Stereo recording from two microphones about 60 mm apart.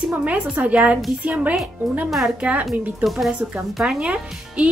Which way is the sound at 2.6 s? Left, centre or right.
Centre.